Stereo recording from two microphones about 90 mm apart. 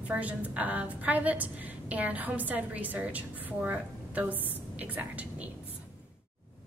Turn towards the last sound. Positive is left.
turn(degrees=-15)  # may be behind; listen again after turning